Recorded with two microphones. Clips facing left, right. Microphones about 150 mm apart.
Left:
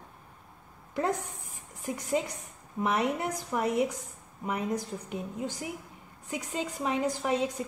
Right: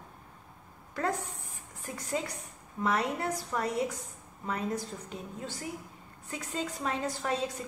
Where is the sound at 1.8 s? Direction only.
15° left (ahead or behind).